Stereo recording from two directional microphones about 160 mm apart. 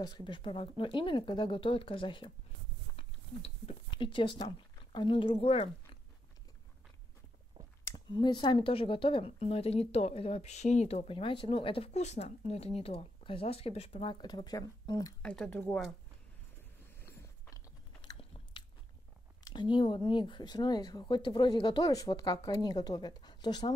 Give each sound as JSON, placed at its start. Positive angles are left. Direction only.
{"t": 0.0, "sound": "speech", "side_deg": 30}
{"t": 7.8, "sound": "speech", "side_deg": 25}
{"t": 15.2, "sound": "speech", "side_deg": 5}
{"t": 17.0, "sound": "biting", "side_deg": 20}
{"t": 19.4, "sound": "speech", "side_deg": 30}